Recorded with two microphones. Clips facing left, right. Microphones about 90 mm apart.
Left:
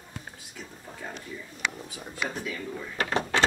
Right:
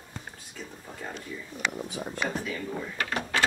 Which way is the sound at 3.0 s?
25° left (ahead or behind).